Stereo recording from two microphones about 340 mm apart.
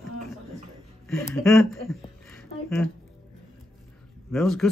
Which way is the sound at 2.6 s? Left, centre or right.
Centre.